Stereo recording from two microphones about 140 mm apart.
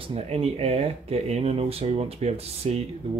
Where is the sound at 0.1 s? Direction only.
45° right (ahead or behind).